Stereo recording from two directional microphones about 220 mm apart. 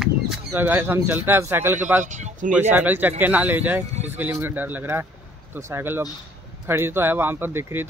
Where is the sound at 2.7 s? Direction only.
10° right (ahead or behind).